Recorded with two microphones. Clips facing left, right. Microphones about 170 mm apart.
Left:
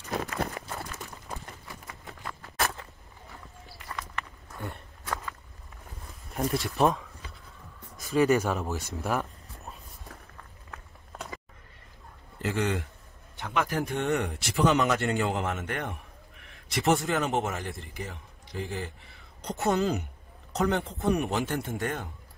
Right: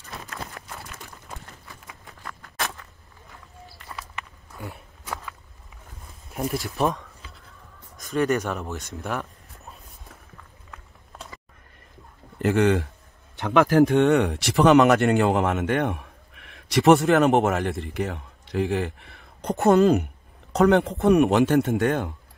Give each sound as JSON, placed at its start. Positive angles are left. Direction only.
{"t": 0.6, "sound": "pigeon", "side_deg": 5}
{"t": 1.9, "sound": "walk", "side_deg": 0}
{"t": 3.9, "sound": "walk", "side_deg": -5}
{"t": 6.3, "sound": "speech", "side_deg": 0}
{"t": 12.4, "sound": "a man's voice", "side_deg": -60}
{"t": 13.4, "sound": "a man's voice", "side_deg": -90}
{"t": 20.5, "sound": "a man's voice", "side_deg": -70}